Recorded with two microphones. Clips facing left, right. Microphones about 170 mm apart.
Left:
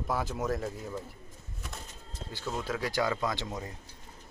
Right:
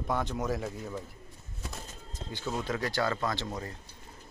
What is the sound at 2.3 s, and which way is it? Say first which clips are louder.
A man's voice: right 1 dB; centre (ahead or behind).